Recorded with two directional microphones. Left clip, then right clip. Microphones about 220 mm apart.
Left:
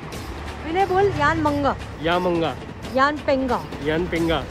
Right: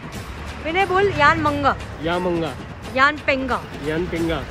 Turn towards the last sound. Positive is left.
turn(degrees=0)  # may be behind; listen again after turning